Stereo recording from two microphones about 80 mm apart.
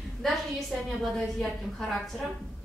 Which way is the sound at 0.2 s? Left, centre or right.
Centre.